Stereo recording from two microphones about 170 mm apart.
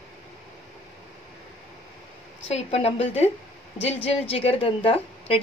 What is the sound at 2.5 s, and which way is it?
Speech, 40° left (ahead or behind).